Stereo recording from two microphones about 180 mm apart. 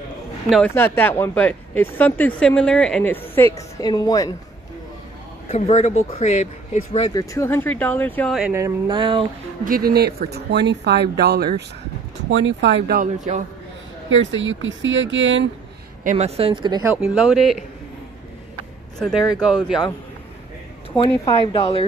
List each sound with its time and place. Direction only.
0.7 s speech: 10° left (ahead or behind)
5.5 s speech: 40° left (ahead or behind)
7.2 s speech: 15° left (ahead or behind)
8.4 s a sound: 10° right (ahead or behind)
9.7 s speech: 55° right (ahead or behind)
12.3 s speech: 90° right; by 13.4 s 45° right (ahead or behind)
14.1 s speech: 90° right
16.0 s speech: 40° right (ahead or behind); by 16.9 s 25° right (ahead or behind)
17.1 s speech: 5° right (ahead or behind)
18.9 s speech: centre (ahead or behind)
21.1 s speech: 15° left (ahead or behind)